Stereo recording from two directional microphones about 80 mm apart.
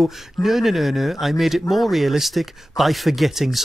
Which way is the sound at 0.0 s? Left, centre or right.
Centre.